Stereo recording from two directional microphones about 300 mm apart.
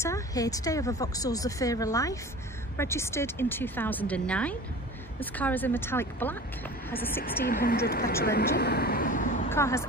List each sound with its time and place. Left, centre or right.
0.0 s speech: centre
7.4 s speech: left
9.5 s speech: centre